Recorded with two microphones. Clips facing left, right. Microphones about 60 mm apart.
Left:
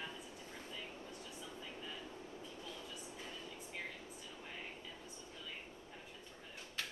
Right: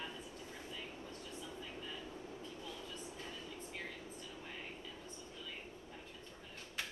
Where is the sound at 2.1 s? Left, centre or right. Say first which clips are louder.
Right 2 dB; centre.